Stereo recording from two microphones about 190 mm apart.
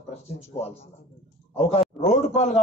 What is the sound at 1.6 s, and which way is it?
A man's voice, 30° left (ahead or behind).